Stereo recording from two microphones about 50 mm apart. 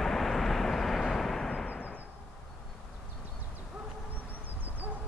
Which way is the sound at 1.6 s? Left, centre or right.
Left.